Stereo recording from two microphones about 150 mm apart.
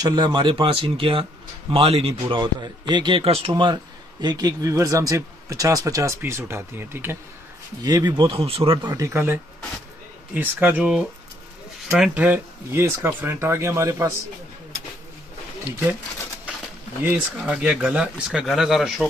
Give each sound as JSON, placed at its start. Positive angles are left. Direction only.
{"t": 0.0, "sound": "a man's voice", "side_deg": -30}
{"t": 7.8, "sound": "speech", "side_deg": -25}
{"t": 8.9, "sound": "speech", "side_deg": -15}
{"t": 17.0, "sound": "speech", "side_deg": -10}